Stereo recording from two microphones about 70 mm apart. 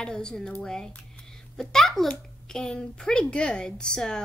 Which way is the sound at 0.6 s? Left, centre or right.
Centre.